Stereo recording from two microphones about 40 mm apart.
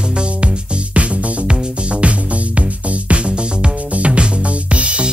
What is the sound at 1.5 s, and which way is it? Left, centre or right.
Music, right.